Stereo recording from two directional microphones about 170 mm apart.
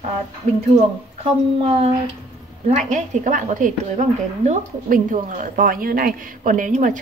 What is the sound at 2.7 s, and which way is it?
A woman's voice, 45° right (ahead or behind).